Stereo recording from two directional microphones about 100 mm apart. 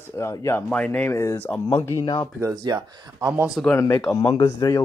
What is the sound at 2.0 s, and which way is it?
Speech, 45° left (ahead or behind).